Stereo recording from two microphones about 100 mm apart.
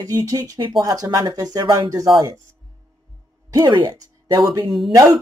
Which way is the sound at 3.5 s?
45° right (ahead or behind).